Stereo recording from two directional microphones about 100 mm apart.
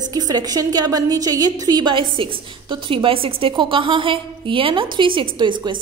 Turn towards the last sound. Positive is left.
turn(degrees=-50)  # may be behind; listen again after turning